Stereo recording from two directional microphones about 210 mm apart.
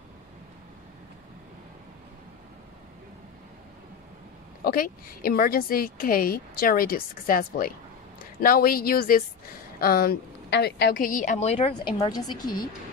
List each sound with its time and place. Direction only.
4.6 s speech: 45° left (ahead or behind); by 12.4 s 20° left (ahead or behind)